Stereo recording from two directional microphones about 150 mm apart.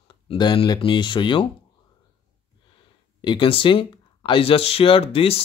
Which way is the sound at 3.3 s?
35° left (ahead or behind).